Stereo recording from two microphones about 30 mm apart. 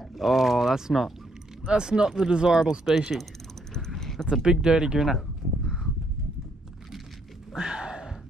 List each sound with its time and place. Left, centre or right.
0.1 s speech: centre
0.7 s speech: centre
1.6 s speech: right
3.9 s a sound: centre
4.3 s speech: right
4.9 s speech: centre
7.5 s a sound: right